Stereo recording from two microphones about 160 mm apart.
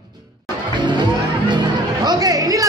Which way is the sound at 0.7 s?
30° right (ahead or behind).